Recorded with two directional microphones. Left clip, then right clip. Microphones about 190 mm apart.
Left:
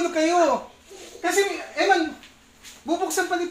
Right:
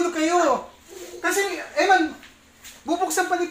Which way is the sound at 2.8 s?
Centre (ahead or behind).